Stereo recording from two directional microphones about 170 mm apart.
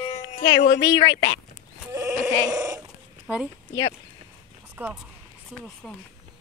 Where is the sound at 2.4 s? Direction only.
20° right (ahead or behind).